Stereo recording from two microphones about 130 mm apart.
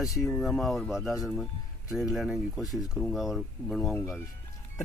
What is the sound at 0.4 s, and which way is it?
Speech, centre (ahead or behind).